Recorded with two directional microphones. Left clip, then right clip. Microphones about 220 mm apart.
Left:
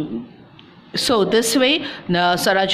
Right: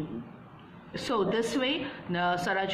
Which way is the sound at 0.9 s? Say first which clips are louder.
Left 12 dB; 50° left (ahead or behind).